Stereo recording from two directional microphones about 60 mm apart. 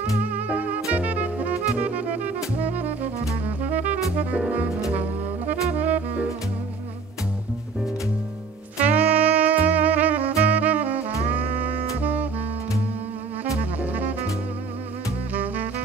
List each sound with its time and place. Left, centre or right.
0.2 s music: right
5.8 s music: right
8.8 s music: right
15.3 s music: right